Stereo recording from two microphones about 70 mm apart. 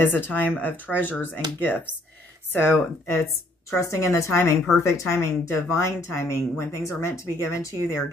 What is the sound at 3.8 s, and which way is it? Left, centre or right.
A woman's voice, left.